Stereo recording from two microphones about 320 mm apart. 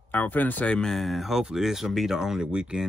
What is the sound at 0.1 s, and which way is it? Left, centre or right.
Speech, centre.